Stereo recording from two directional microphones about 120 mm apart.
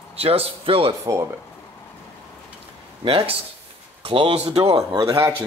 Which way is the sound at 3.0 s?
50° right (ahead or behind).